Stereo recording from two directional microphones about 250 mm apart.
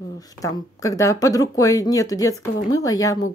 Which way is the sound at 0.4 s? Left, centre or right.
Centre.